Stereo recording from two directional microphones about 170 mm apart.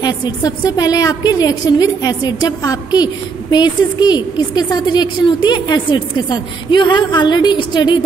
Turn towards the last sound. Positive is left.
turn(degrees=25)  # may be behind; listen again after turning